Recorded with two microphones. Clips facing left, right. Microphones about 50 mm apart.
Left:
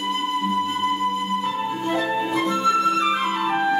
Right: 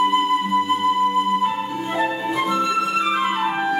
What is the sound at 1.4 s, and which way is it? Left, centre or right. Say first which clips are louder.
Flute: right 1 dB; right.